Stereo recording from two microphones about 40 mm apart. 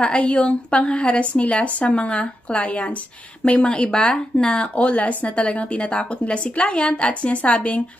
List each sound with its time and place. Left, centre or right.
0.0 s a woman's voice: left